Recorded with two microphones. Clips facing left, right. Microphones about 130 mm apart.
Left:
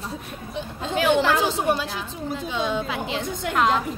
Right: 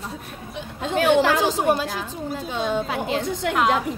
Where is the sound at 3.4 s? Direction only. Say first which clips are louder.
Right 1 dB; 70° right (ahead or behind).